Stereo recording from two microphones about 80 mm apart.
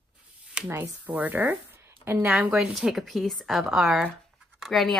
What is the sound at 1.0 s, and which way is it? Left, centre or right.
Speech, right.